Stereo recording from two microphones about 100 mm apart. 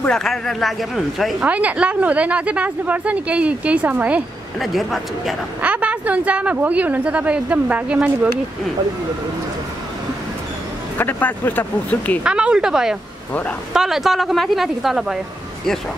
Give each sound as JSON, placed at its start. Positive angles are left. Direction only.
{"t": 0.0, "sound": "a woman's voice", "side_deg": 5}
{"t": 1.4, "sound": "speech", "side_deg": -15}
{"t": 4.6, "sound": "a woman's voice", "side_deg": 0}
{"t": 5.6, "sound": "speech", "side_deg": -15}
{"t": 11.0, "sound": "speech", "side_deg": 20}
{"t": 12.2, "sound": "a woman's voice", "side_deg": -10}